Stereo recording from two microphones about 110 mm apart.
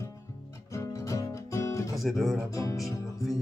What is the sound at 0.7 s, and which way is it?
Music, 30° left (ahead or behind).